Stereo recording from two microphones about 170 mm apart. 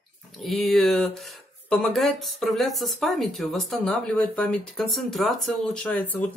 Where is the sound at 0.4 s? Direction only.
Centre (ahead or behind).